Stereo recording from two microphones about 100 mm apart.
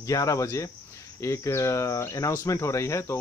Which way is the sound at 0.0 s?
35° left (ahead or behind).